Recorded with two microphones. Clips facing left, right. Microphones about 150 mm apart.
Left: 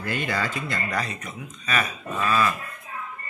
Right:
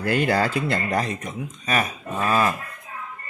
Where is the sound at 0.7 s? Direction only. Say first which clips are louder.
Right 5 dB; 25° right (ahead or behind).